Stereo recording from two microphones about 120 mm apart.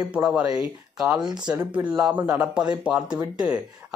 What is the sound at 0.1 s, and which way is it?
Speech, 10° right (ahead or behind).